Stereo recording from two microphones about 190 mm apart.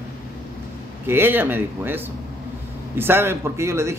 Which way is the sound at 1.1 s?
10° right (ahead or behind).